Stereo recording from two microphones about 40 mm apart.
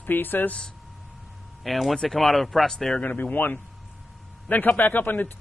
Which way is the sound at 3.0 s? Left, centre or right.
Left.